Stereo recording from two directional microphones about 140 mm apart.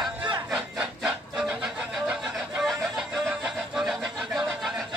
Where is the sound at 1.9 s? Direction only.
Centre (ahead or behind).